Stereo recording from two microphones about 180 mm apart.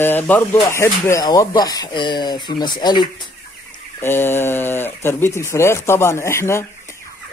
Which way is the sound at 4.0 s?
10° left (ahead or behind).